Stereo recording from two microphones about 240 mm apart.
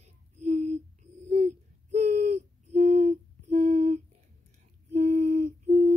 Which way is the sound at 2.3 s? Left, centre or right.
Right.